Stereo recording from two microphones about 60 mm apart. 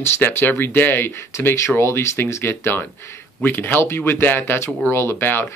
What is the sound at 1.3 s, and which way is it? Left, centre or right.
Speech, left.